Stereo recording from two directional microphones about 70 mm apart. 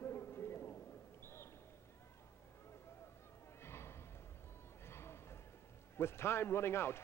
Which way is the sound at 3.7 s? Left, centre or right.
Left.